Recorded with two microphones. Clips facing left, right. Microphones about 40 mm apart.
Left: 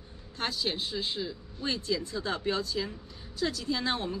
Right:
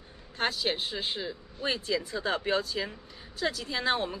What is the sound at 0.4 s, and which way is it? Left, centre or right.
Speech, right.